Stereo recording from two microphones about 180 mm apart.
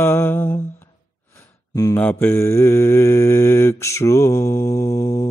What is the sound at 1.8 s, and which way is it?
Mantra, 20° left (ahead or behind).